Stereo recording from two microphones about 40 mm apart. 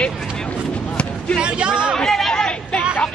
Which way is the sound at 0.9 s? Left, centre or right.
Left.